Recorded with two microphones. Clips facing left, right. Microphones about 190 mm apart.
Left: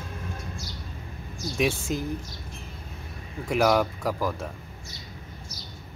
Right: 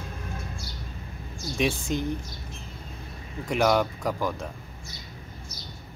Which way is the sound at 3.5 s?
Centre (ahead or behind).